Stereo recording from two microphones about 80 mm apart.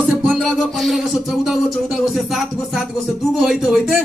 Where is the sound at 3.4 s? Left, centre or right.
Centre.